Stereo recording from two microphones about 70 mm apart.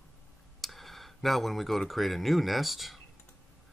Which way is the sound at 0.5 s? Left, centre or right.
Centre.